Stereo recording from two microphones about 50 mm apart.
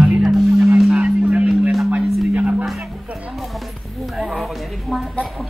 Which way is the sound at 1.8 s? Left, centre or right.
Right.